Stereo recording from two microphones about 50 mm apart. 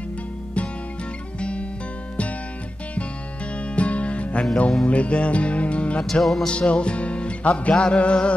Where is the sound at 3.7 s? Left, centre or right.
Left.